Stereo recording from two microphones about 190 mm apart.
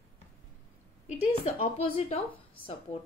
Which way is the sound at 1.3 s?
35° left (ahead or behind).